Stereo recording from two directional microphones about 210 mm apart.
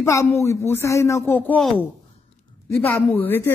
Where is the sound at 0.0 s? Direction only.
15° left (ahead or behind).